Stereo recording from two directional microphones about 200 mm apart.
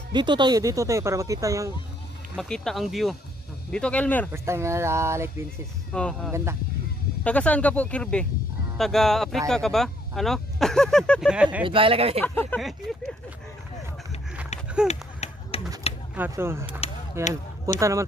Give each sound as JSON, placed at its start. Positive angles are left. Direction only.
{"t": 0.1, "sound": "speech", "side_deg": -25}
{"t": 2.3, "sound": "speech", "side_deg": 5}
{"t": 4.3, "sound": "speech", "side_deg": -15}
{"t": 5.9, "sound": "speech", "side_deg": 5}
{"t": 11.6, "sound": "speech", "side_deg": -25}
{"t": 12.2, "sound": "speech", "side_deg": 10}
{"t": 14.9, "sound": "run", "side_deg": 30}
{"t": 15.8, "sound": "mechanisms", "side_deg": 30}
{"t": 16.2, "sound": "speech", "side_deg": -10}